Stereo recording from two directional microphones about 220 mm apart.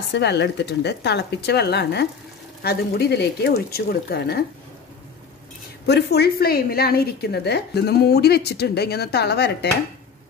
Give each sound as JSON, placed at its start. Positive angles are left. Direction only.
{"t": 0.1, "sound": "a woman's voice", "side_deg": 50}
{"t": 5.9, "sound": "a woman's voice", "side_deg": 50}